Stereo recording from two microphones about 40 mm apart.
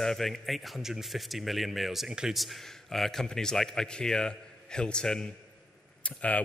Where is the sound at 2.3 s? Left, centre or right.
Centre.